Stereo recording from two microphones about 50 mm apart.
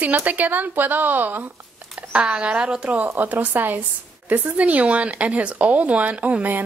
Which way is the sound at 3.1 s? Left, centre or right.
Right.